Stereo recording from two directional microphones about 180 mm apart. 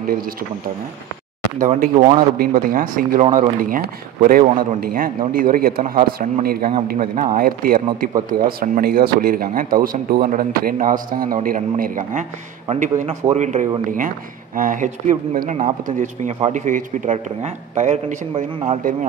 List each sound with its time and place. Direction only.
1.6 s speech: 50° right (ahead or behind)
2.0 s a man's voice: 30° right (ahead or behind)
2.3 s speech: 55° right (ahead or behind); by 18.8 s 35° right (ahead or behind)